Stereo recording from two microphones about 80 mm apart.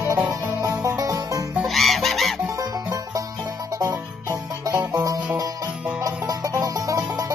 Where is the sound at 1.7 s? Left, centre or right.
Centre.